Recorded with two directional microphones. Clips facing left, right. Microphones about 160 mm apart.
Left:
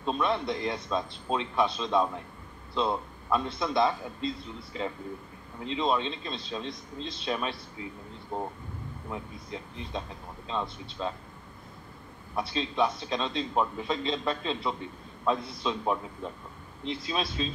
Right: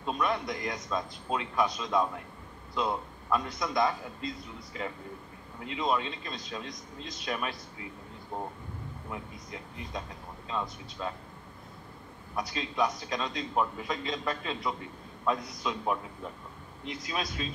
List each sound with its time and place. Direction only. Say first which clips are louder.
0.0 s a man's voice: left 2 dB; 25° left (ahead or behind)
9.1 s a man's voice: left 4 dB; 25° left (ahead or behind)
12.4 s a man's voice: left 2 dB; 25° left (ahead or behind)